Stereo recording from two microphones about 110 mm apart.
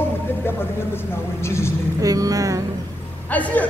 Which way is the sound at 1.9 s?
35° right (ahead or behind).